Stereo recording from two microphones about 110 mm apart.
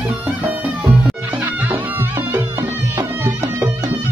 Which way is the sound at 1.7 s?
20° right (ahead or behind).